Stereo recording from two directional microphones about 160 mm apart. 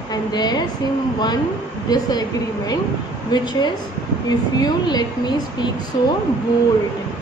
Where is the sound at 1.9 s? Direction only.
25° left (ahead or behind).